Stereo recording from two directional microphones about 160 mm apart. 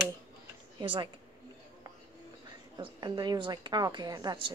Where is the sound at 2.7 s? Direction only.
25° right (ahead or behind).